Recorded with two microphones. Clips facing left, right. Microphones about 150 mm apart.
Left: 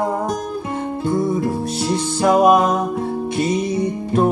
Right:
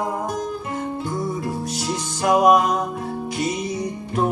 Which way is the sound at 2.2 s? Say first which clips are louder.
Left 2 dB; 30° left (ahead or behind).